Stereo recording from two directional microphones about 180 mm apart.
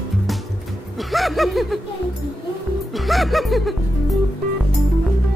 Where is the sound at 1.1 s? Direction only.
Centre (ahead or behind).